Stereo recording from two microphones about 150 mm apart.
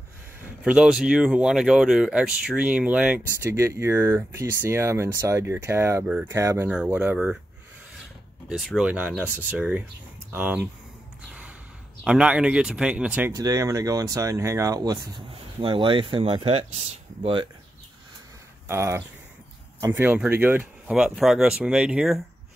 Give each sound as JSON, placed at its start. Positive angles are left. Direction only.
{"t": 0.7, "sound": "speech", "side_deg": -5}
{"t": 8.5, "sound": "speech", "side_deg": 0}
{"t": 12.0, "sound": "speech", "side_deg": -5}
{"t": 13.3, "sound": "speech", "side_deg": -25}
{"t": 18.7, "sound": "speech", "side_deg": -15}